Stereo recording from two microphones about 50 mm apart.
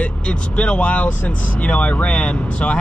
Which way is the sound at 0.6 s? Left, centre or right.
Left.